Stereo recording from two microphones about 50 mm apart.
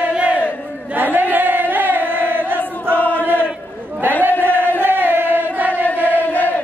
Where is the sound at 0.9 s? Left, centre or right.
Right.